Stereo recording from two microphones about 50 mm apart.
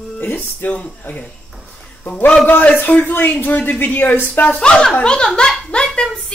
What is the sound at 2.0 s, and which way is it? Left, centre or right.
A child's voice, left.